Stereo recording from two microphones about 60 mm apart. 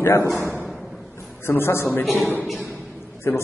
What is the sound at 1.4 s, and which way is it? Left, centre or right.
Speech, left.